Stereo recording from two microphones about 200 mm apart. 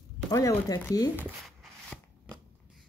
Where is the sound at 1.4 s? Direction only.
Centre (ahead or behind).